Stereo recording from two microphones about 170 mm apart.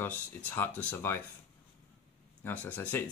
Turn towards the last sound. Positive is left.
turn(degrees=10)  # may be behind; listen again after turning